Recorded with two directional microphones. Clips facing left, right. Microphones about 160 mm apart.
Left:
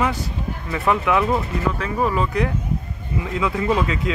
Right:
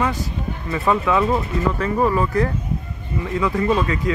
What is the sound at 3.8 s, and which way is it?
Speech, 90° left.